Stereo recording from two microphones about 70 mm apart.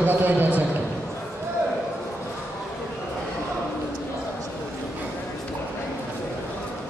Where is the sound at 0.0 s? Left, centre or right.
Right.